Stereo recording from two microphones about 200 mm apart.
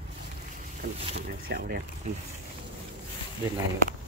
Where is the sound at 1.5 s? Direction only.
55° right (ahead or behind).